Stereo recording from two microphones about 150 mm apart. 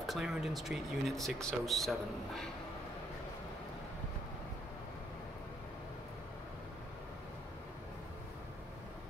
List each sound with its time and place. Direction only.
0.0 s speech: centre (ahead or behind)